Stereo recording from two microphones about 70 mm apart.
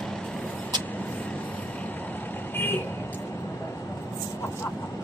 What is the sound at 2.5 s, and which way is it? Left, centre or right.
Vehicle, left.